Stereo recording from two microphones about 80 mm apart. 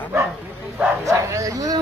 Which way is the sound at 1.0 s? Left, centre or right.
Right.